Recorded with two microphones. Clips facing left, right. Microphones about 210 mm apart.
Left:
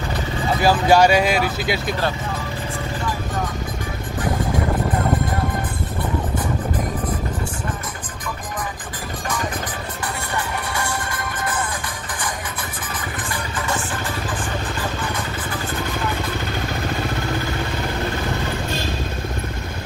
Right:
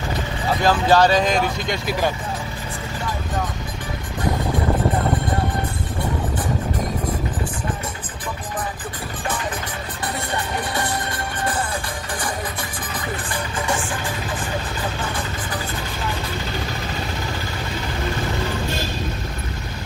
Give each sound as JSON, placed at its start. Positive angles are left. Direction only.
{"t": 0.6, "sound": "speech", "side_deg": 10}
{"t": 1.9, "sound": "speech", "side_deg": -15}
{"t": 10.8, "sound": "music", "side_deg": -30}